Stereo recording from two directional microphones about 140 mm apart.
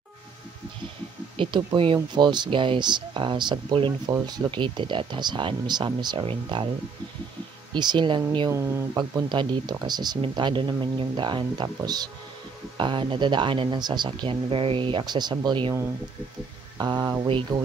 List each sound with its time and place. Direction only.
1.3 s speech: 35° right (ahead or behind)
7.7 s speech: 35° right (ahead or behind)
8.5 s speech: 20° right (ahead or behind)
8.9 s speech: 35° right (ahead or behind)
16.7 s speech: 30° right (ahead or behind)